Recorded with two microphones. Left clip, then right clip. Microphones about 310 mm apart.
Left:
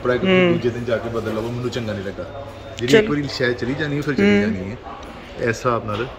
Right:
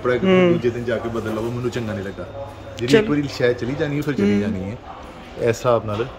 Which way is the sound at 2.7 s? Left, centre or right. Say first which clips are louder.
Left 1 dB; centre.